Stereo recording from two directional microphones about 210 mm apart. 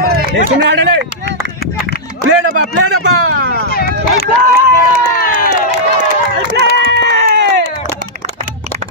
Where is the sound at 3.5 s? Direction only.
45° left (ahead or behind).